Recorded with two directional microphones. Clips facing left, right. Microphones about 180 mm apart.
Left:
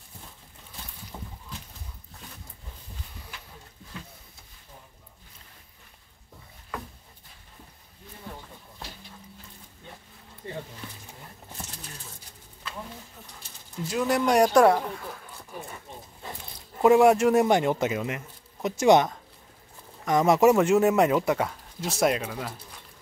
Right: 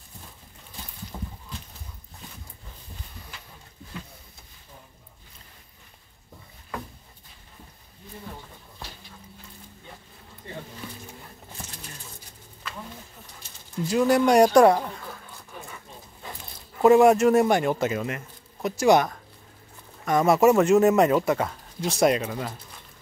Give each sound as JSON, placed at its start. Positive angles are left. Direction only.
{"t": 1.1, "sound": "a sound", "side_deg": 5}
{"t": 13.8, "sound": "speech", "side_deg": 0}
{"t": 16.8, "sound": "speech", "side_deg": 10}